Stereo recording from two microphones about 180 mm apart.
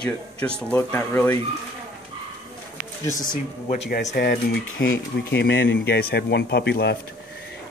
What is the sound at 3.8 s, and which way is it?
Speech, 60° left (ahead or behind).